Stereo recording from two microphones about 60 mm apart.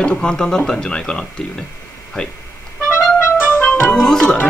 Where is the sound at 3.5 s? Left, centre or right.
Left.